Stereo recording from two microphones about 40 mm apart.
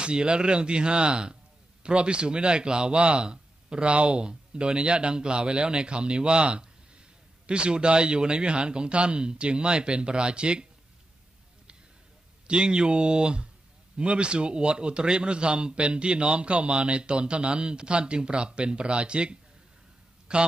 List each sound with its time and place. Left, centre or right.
0.0 s speech: right
12.4 s a man's voice: right